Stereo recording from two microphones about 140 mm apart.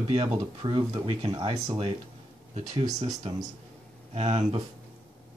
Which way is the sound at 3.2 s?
30° right (ahead or behind).